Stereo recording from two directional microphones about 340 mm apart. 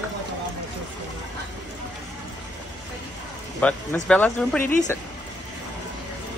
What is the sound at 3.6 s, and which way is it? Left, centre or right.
Speech, centre.